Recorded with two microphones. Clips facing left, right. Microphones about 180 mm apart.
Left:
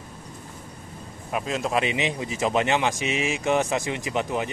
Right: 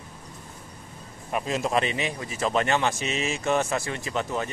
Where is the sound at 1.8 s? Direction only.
15° left (ahead or behind).